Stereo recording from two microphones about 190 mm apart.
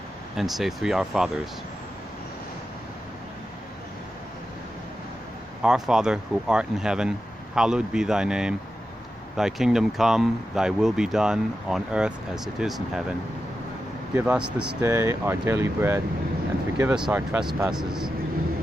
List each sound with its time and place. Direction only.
0.4 s speech: centre (ahead or behind)
5.6 s speech: 5° right (ahead or behind)
14.1 s speech: 10° right (ahead or behind)